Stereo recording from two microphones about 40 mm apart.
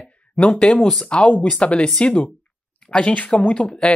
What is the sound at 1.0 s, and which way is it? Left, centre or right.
Speech, left.